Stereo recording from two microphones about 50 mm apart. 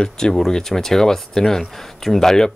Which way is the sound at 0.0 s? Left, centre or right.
Centre.